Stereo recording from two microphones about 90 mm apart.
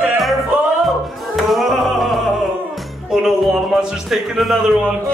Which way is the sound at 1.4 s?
Centre (ahead or behind).